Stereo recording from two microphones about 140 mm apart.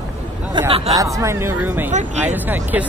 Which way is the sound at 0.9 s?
25° right (ahead or behind).